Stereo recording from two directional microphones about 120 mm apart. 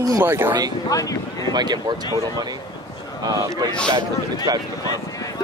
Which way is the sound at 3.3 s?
30° right (ahead or behind).